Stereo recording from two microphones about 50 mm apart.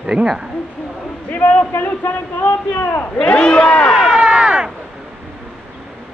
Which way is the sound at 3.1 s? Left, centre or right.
Centre.